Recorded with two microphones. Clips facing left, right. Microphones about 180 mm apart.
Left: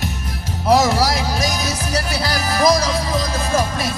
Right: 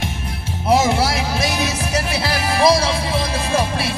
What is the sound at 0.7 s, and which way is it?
Music, 40° left (ahead or behind).